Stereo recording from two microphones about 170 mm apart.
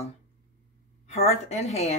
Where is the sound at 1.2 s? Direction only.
40° left (ahead or behind).